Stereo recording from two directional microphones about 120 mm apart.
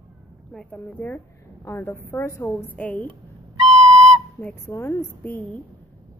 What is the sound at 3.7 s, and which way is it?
Flute, 40° right (ahead or behind).